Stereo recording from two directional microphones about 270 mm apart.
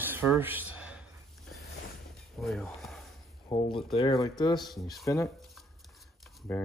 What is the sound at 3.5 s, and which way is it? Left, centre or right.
Speech, centre.